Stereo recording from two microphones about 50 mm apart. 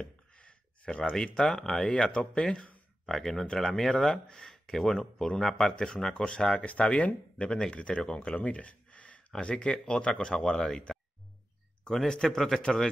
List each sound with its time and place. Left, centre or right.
0.0 s a sound: centre
1.3 s speech: centre
3.1 s speech: centre
6.6 s speech: left
12.1 s speech: centre